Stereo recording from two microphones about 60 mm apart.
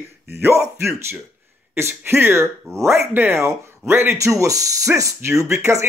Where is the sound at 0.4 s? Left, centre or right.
Right.